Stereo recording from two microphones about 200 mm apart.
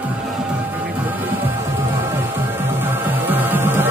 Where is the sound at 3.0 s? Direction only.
10° right (ahead or behind).